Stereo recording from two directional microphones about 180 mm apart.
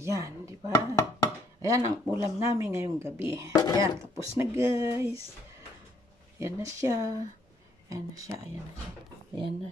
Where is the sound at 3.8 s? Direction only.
15° right (ahead or behind).